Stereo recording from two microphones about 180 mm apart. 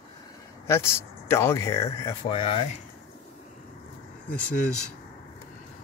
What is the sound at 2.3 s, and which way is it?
Speech, 30° left (ahead or behind).